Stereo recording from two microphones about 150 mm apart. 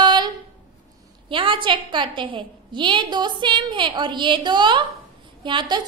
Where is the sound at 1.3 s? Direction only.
35° right (ahead or behind).